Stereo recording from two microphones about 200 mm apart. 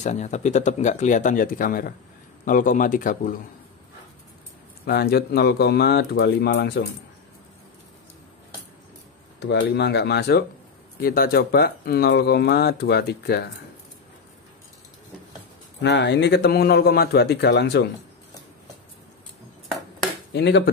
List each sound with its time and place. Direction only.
0.0 s speech: 35° left (ahead or behind)
4.8 s speech: 50° left (ahead or behind)
9.4 s speech: 60° left (ahead or behind)
15.8 s speech: 60° left (ahead or behind)
20.3 s speech: 60° left (ahead or behind)